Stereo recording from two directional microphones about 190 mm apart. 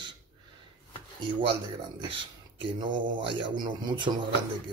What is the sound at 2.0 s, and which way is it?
Speech, 25° right (ahead or behind).